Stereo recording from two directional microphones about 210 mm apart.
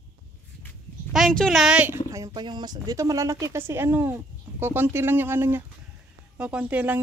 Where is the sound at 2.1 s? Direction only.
20° right (ahead or behind).